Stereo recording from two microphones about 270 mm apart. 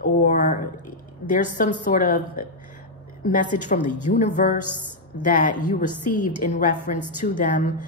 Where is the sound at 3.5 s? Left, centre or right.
Left.